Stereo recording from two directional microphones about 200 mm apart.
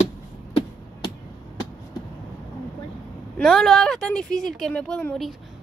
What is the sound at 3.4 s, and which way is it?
Speech, centre (ahead or behind).